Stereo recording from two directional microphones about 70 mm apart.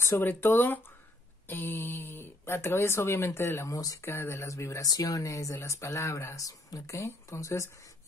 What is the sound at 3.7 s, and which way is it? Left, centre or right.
Speech, left.